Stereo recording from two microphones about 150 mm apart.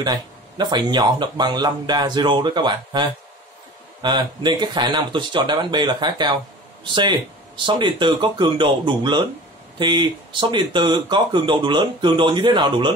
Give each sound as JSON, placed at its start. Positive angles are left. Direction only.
{"t": 0.0, "sound": "speech", "side_deg": -30}